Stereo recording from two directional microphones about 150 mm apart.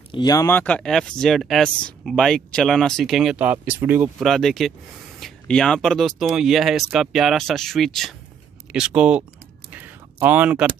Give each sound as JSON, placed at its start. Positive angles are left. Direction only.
{"t": 0.1, "sound": "speech", "side_deg": 25}
{"t": 0.5, "sound": "speech", "side_deg": 10}
{"t": 4.2, "sound": "speech", "side_deg": 0}
{"t": 9.7, "sound": "a sound", "side_deg": -10}